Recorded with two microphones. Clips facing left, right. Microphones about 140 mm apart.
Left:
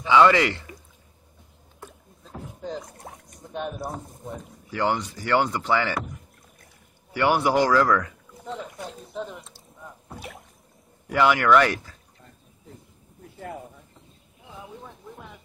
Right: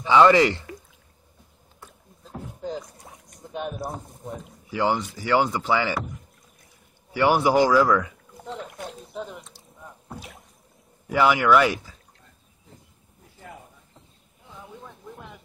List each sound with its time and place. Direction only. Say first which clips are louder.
0.3 s speech: right 4 dB; 25° right (ahead or behind)
2.2 s beatboxing: right 2 dB; centre (ahead or behind)
3.3 s speech: even; 5° right (ahead or behind)
11.1 s speech: even; 5° right (ahead or behind)
14.5 s a sound: left 1 dB; 5° left (ahead or behind)